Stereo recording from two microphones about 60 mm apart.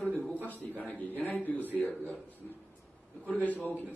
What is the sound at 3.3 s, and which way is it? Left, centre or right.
Speech, left.